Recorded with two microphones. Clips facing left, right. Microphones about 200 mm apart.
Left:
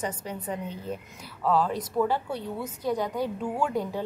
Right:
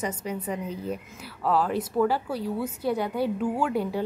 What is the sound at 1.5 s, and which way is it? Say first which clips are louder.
A woman's voice: right 1 dB; 5° right (ahead or behind).